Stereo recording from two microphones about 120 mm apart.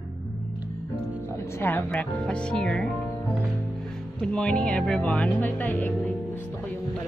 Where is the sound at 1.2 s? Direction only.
20° left (ahead or behind).